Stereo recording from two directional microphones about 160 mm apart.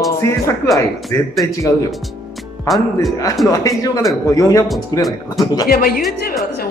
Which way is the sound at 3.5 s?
20° left (ahead or behind).